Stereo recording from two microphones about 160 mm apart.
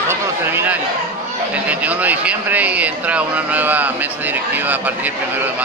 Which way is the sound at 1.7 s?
10° right (ahead or behind).